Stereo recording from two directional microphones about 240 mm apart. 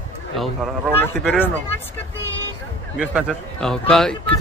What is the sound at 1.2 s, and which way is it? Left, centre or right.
Speech, centre.